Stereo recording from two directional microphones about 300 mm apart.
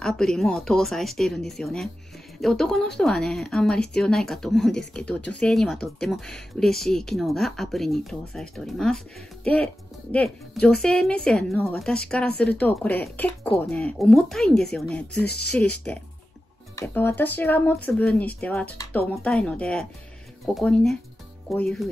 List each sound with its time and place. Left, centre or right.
0.0 s speech: centre
16.7 s speech: centre